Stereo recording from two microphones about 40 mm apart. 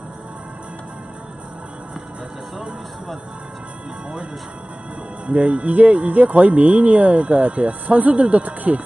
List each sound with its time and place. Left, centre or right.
5.2 s speech: right